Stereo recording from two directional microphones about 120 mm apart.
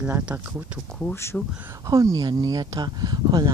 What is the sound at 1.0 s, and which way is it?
Speech, 20° left (ahead or behind).